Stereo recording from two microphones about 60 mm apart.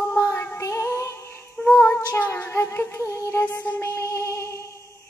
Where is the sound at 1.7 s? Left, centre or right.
Left.